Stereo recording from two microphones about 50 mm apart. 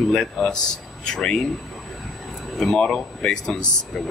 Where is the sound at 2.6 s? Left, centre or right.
Centre.